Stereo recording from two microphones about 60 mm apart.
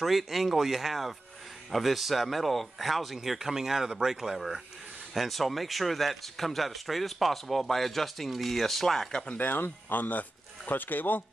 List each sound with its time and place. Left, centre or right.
0.0 s speech: centre
9.2 s speech: left